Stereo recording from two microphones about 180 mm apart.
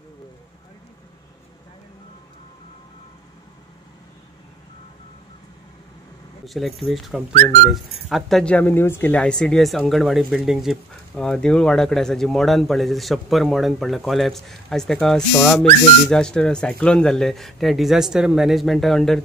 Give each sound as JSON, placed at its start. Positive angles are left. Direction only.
{"t": 6.4, "sound": "speech", "side_deg": 0}